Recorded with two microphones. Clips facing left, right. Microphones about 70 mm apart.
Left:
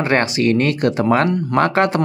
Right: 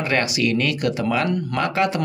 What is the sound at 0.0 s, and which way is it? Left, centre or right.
Speech, left.